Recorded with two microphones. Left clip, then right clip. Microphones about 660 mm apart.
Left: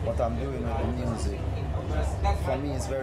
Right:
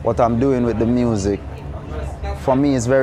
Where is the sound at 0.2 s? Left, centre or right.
Right.